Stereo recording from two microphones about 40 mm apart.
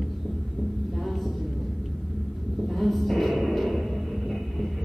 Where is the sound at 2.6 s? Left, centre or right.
Centre.